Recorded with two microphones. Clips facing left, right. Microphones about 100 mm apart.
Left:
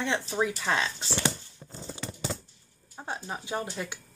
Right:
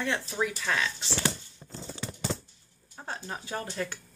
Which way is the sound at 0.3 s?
25° left (ahead or behind).